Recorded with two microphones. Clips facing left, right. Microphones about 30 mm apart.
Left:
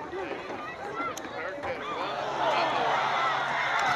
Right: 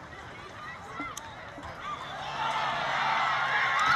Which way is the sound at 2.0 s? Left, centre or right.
Left.